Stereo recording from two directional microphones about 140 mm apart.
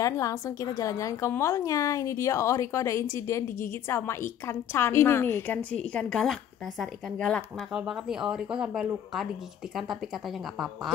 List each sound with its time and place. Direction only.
0.0 s a woman's voice: 25° left (ahead or behind); by 9.3 s centre (ahead or behind)